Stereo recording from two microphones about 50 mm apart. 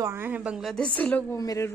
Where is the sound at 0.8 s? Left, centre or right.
Left.